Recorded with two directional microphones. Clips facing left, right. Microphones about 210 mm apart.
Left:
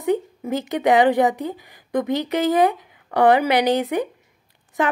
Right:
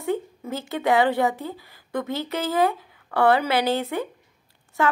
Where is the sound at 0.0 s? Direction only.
15° left (ahead or behind).